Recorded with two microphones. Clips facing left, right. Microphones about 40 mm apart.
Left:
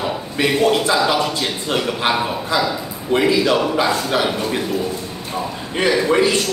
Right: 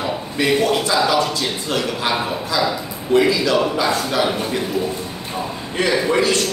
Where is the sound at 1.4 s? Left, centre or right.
Left.